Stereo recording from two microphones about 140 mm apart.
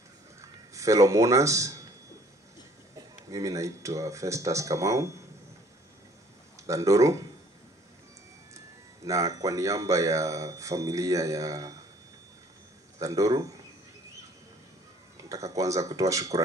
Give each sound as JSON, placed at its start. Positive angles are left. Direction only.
{"t": 0.4, "sound": "speech", "side_deg": -20}
{"t": 3.3, "sound": "speech", "side_deg": -25}
{"t": 6.6, "sound": "speech", "side_deg": -20}
{"t": 8.5, "sound": "speech", "side_deg": -25}
{"t": 13.0, "sound": "speech", "side_deg": -25}
{"t": 15.2, "sound": "speech", "side_deg": -25}